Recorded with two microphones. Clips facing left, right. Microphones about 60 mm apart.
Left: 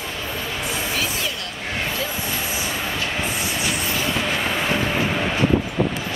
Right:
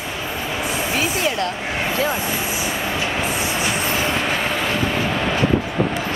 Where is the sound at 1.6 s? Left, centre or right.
Centre.